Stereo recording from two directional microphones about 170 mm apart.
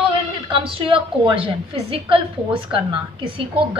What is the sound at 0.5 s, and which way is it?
A woman's voice, 30° right (ahead or behind).